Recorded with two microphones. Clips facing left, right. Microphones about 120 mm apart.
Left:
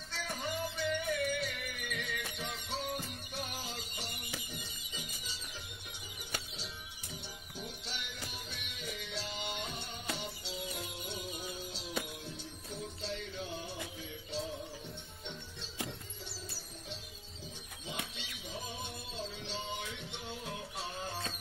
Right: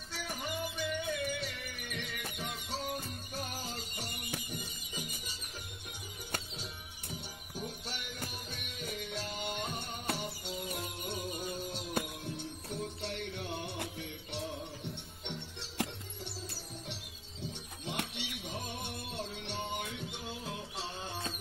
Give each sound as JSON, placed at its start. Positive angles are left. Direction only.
{"t": 0.1, "sound": "music", "side_deg": -15}
{"t": 1.1, "sound": "music", "side_deg": -30}
{"t": 7.5, "sound": "music", "side_deg": -45}
{"t": 17.8, "sound": "music", "side_deg": -70}
{"t": 20.7, "sound": "music", "side_deg": -25}